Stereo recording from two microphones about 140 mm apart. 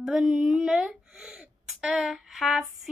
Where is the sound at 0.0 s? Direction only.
5° right (ahead or behind).